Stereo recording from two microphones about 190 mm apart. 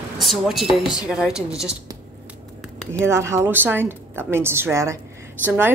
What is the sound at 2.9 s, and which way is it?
Speech, 15° right (ahead or behind).